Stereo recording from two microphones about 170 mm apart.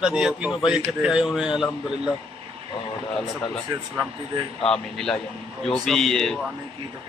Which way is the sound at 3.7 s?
20° right (ahead or behind).